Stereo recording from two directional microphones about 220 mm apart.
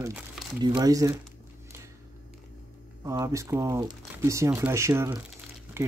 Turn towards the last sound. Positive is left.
turn(degrees=-10)  # may be behind; listen again after turning